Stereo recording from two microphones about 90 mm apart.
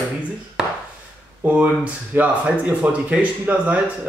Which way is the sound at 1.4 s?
15° right (ahead or behind).